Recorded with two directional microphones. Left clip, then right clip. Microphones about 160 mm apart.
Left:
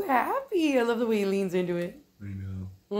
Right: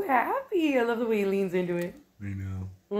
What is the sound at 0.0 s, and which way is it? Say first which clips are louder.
A woman's voice: even; 10° left (ahead or behind).